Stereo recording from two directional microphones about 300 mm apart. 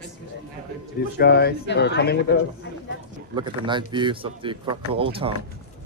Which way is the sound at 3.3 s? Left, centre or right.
Centre.